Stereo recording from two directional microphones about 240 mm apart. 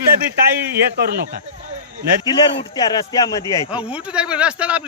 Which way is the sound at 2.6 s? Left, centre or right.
Centre.